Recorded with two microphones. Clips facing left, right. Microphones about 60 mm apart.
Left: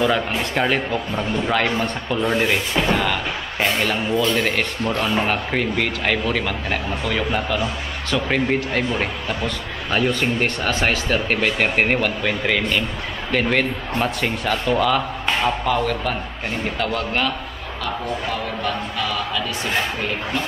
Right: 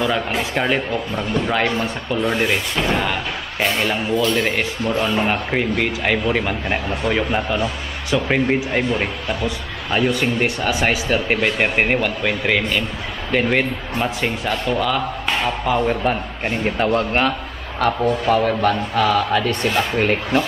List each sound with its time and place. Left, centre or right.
0.4 s speech: centre
8.1 s speech: centre
15.8 s a man's voice: right
17.7 s a man's voice: right